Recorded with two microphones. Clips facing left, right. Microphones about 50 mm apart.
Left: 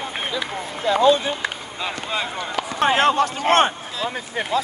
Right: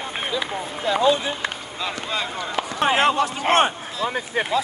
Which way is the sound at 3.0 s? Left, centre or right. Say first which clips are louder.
Left 2 dB; left.